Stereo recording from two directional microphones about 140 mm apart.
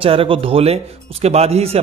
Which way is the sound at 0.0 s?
40° right (ahead or behind).